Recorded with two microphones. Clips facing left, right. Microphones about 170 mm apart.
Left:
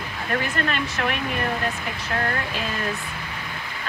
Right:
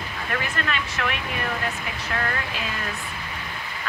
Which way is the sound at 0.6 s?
35° left (ahead or behind).